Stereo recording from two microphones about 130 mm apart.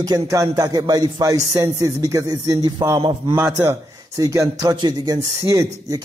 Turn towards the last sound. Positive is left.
turn(degrees=-25)  # may be behind; listen again after turning